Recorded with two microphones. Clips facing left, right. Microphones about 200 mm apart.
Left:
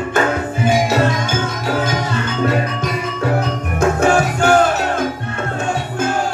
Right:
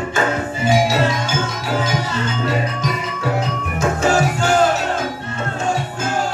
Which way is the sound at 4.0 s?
55° left (ahead or behind).